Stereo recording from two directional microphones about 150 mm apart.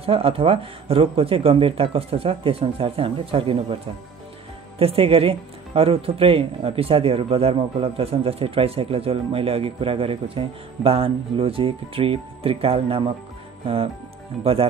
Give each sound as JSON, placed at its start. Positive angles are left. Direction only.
{"t": 0.0, "sound": "speech", "side_deg": -40}
{"t": 4.7, "sound": "speech", "side_deg": -40}
{"t": 14.4, "sound": "speech", "side_deg": -40}